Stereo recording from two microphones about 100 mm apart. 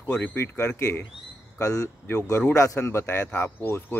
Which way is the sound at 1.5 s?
35° left (ahead or behind).